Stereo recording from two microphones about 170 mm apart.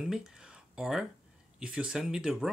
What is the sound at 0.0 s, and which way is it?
Speech, 5° right (ahead or behind).